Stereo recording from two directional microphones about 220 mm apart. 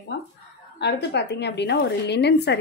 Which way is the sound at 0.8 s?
50° left (ahead or behind).